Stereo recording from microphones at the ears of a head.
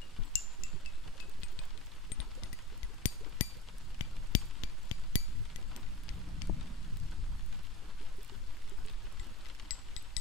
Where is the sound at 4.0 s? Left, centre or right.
Left.